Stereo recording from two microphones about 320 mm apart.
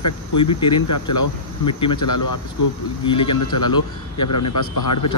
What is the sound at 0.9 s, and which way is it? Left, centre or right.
A man's voice, left.